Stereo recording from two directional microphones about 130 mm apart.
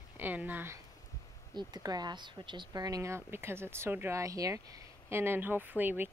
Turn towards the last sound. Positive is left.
turn(degrees=-15)  # may be behind; listen again after turning